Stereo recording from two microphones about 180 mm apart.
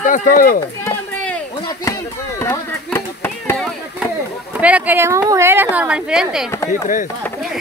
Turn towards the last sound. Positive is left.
turn(degrees=45)  # may be behind; listen again after turning